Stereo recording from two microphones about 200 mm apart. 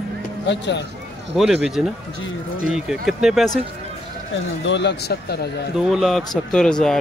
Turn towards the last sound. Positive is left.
turn(degrees=5)  # may be behind; listen again after turning